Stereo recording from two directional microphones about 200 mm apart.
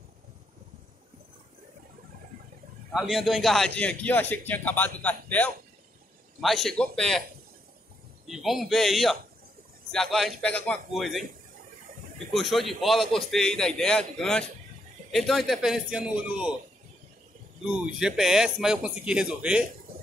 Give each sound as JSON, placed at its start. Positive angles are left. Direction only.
{"t": 2.9, "sound": "a man's voice", "side_deg": 0}
{"t": 8.3, "sound": "a man's voice", "side_deg": 0}
{"t": 12.3, "sound": "a man's voice", "side_deg": 0}
{"t": 17.6, "sound": "a man's voice", "side_deg": -5}